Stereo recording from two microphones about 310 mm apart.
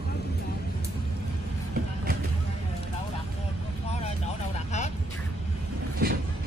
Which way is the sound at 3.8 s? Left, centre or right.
Left.